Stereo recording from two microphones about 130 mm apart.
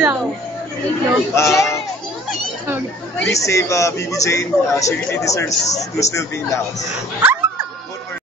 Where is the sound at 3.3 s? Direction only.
25° left (ahead or behind).